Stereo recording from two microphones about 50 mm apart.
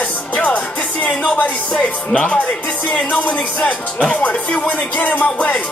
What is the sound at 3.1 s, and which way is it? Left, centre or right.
Music, left.